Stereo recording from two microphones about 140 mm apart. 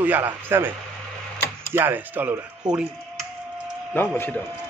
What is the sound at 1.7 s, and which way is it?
Speech, 15° right (ahead or behind).